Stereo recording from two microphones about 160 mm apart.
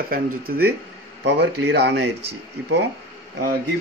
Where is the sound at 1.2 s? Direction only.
90° right.